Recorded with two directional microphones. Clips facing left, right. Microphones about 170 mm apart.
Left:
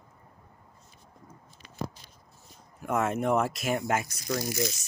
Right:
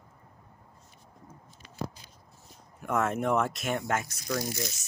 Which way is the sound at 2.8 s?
5° left (ahead or behind).